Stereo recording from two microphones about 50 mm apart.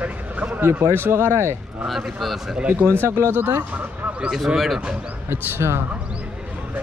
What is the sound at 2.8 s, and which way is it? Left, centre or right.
Speech, right.